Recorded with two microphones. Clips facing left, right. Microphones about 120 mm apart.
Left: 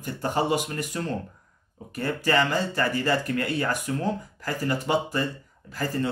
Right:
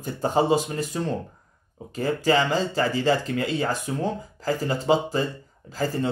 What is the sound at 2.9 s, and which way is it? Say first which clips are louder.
Speech: right 2 dB; 20° right (ahead or behind).